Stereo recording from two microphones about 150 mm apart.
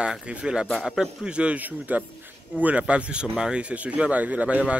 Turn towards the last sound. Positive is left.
turn(degrees=-10)  # may be behind; listen again after turning